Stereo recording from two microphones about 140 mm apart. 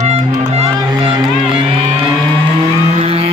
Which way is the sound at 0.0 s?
45° right (ahead or behind).